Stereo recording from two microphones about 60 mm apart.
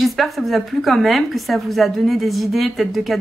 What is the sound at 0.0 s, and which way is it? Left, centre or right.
A woman's voice, centre.